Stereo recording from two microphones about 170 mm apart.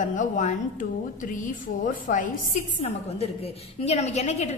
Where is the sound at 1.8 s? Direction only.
50° left (ahead or behind).